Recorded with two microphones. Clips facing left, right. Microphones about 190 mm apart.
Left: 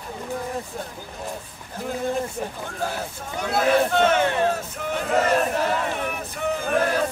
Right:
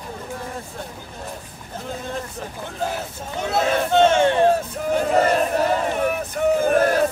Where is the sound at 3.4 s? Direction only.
25° right (ahead or behind).